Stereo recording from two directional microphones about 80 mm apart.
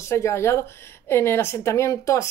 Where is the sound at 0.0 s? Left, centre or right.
Left.